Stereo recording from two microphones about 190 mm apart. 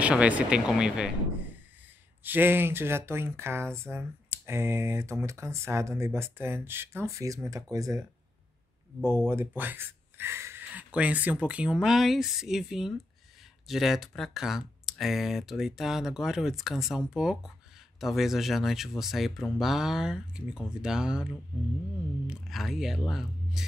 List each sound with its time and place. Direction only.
0.0 s speech: 5° right (ahead or behind)
9.0 s speech: 15° right (ahead or behind)